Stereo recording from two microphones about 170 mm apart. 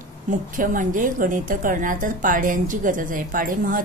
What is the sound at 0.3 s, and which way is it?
A woman's voice, 50° right (ahead or behind).